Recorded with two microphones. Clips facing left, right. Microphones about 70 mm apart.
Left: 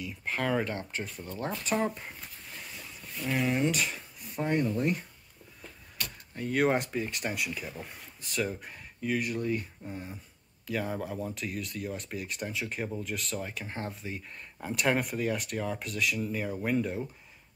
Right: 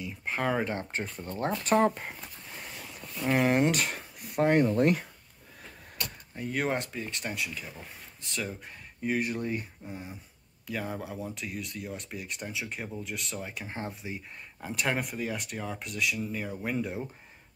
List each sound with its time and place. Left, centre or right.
0.0 s speech: centre
0.7 s speech: right
2.8 s speech: right
6.3 s speech: centre
9.0 s speech: right
9.8 s speech: centre